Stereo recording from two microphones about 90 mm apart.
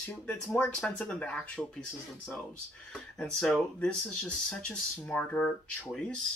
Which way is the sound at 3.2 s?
10° left (ahead or behind).